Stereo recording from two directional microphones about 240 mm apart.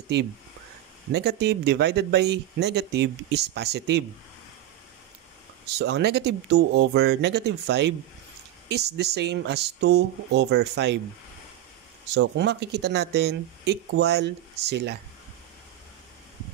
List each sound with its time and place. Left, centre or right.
1.1 s speech: right
5.8 s speech: right
12.2 s speech: right